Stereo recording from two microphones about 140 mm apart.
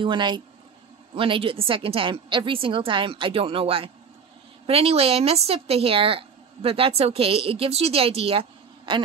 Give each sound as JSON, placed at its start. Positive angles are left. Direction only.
{"t": 0.0, "sound": "a woman's voice", "side_deg": -35}